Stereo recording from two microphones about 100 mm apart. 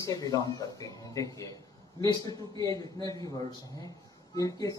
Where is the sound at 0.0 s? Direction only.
35° left (ahead or behind).